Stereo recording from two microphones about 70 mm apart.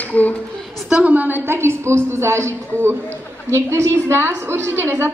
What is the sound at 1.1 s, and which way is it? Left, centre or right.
A woman's voice, right.